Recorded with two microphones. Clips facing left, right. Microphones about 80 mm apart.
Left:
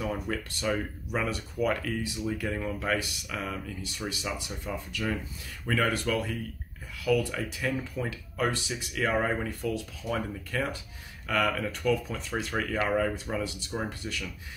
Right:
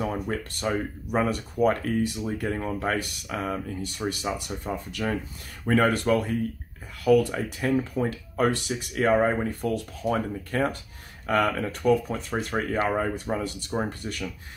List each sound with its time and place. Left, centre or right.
0.0 s speech: right
4.1 s speech: right
9.0 s speech: right